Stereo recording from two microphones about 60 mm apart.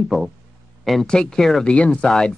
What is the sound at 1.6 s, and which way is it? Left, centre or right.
Speech, centre.